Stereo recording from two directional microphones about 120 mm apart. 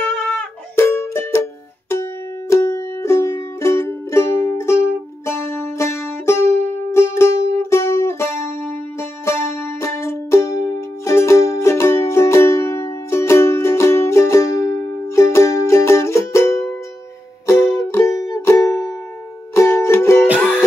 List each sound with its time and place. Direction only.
0.0 s music: 10° left (ahead or behind)
0.7 s music: 20° left (ahead or behind)
2.5 s music: 25° left (ahead or behind)